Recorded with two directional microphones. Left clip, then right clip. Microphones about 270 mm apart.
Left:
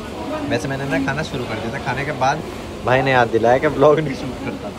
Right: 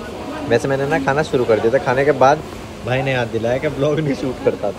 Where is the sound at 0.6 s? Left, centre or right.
Centre.